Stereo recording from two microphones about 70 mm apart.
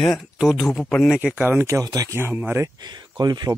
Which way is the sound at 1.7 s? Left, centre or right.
Right.